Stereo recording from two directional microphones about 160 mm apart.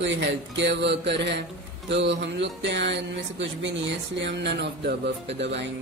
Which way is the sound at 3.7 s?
90° right.